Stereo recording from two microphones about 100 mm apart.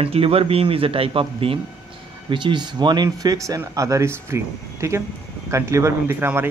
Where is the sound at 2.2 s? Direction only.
50° right (ahead or behind); by 6.1 s 30° right (ahead or behind).